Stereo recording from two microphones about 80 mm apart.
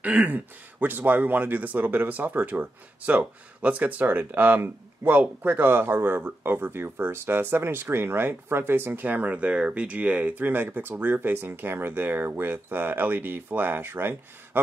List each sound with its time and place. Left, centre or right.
0.0 s speech: centre